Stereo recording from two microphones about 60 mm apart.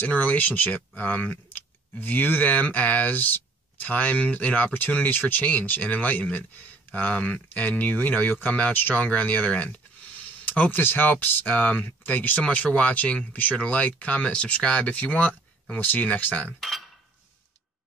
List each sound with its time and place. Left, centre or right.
0.0 s speech: left
16.5 s cutlery: centre